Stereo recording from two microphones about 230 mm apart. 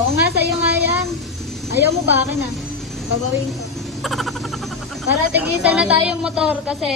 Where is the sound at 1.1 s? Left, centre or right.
Centre.